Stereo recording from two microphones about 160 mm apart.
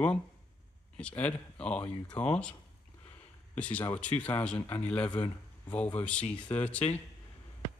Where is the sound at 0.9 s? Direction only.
10° left (ahead or behind).